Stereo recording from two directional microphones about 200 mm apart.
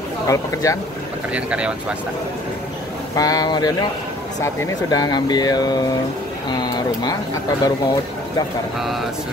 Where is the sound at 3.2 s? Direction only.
20° left (ahead or behind).